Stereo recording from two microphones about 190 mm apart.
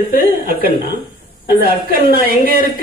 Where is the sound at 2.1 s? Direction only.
50° right (ahead or behind).